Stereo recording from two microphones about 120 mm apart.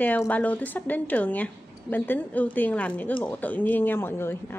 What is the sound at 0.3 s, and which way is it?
A woman's voice, 15° left (ahead or behind).